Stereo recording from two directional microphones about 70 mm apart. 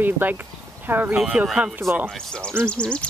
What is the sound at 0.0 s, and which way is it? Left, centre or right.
Speech, right.